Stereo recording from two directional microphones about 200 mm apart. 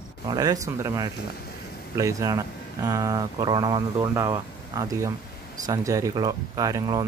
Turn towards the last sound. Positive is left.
turn(degrees=-15)  # may be behind; listen again after turning